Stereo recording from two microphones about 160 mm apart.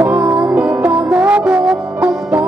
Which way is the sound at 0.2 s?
20° right (ahead or behind).